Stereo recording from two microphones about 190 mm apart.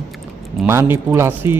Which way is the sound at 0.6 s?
10° right (ahead or behind).